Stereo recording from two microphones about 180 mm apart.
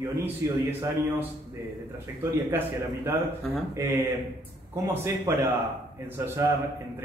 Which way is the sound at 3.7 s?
15° right (ahead or behind).